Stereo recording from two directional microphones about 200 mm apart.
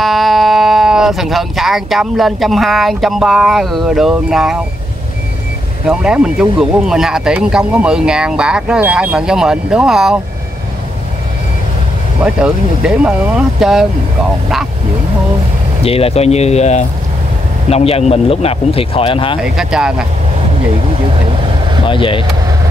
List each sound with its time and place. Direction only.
0.0 s speech: centre (ahead or behind)
5.9 s speech: 5° right (ahead or behind)
12.2 s speech: 5° right (ahead or behind)
15.8 s speech: 30° left (ahead or behind)
19.4 s speech: 5° right (ahead or behind)
21.8 s speech: 25° left (ahead or behind)